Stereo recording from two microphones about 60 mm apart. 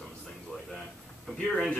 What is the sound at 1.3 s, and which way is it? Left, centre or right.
Speech, centre.